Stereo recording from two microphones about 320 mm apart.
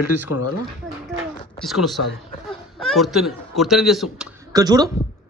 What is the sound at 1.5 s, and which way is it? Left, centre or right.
A man's voice, centre.